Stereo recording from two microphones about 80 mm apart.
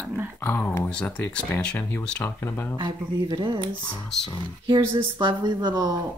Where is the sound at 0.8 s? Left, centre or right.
Centre.